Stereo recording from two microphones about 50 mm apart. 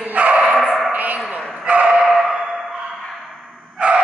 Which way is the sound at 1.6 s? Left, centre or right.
Right.